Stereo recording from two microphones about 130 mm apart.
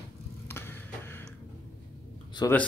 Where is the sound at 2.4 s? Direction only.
30° left (ahead or behind).